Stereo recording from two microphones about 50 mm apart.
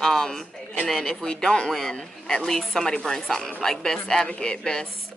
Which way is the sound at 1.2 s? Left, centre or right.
Centre.